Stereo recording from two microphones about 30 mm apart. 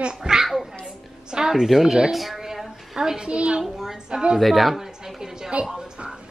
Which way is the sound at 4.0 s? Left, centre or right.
Right.